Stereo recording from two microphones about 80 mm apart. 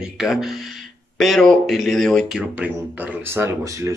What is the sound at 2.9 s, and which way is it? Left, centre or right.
Speech, right.